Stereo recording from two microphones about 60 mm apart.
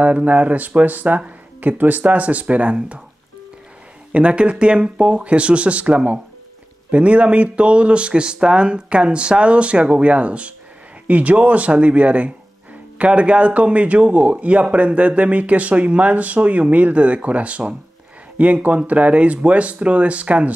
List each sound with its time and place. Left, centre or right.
0.0 s speech: right
4.1 s speech: centre